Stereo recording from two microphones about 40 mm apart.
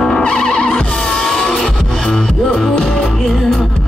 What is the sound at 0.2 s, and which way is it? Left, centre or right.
Music, left.